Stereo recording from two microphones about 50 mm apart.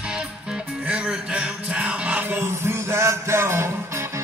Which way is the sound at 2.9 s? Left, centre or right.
Right.